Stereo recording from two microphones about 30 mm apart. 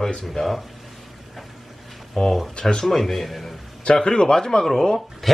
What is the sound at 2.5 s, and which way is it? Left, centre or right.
Speech, left.